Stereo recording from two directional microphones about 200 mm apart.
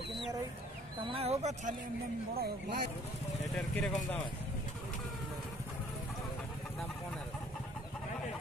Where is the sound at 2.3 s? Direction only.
50° right (ahead or behind).